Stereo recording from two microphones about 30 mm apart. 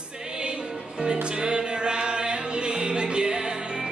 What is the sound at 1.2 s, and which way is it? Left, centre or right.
Music, right.